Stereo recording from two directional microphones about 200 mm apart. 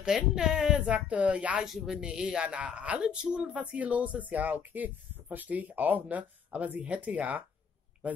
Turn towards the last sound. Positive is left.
turn(degrees=-5)  # may be behind; listen again after turning